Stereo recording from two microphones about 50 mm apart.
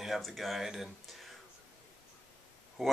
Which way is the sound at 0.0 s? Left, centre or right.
Centre.